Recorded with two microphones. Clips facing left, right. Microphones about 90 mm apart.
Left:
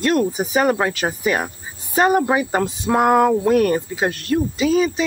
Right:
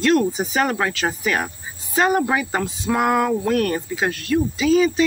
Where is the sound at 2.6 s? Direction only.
35° left (ahead or behind).